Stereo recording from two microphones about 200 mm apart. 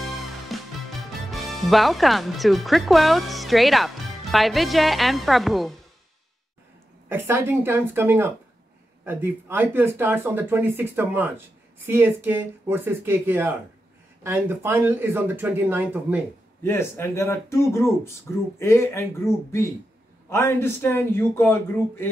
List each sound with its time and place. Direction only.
0.5 s music: centre (ahead or behind)
1.1 s speech: centre (ahead or behind)
7.1 s speech: 10° right (ahead or behind)
16.6 s a man's voice: 10° left (ahead or behind)